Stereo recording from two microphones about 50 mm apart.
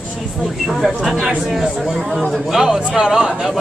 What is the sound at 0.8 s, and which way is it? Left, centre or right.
Speech, centre.